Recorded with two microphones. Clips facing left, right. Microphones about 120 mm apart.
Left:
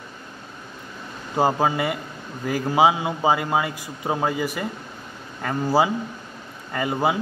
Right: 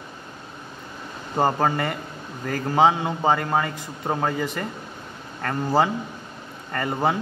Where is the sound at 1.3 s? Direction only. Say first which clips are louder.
Left 1 dB; 5° left (ahead or behind).